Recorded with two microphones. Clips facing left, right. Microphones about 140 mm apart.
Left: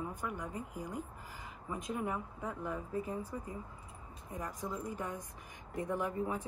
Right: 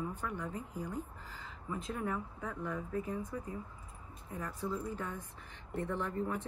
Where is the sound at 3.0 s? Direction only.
35° left (ahead or behind).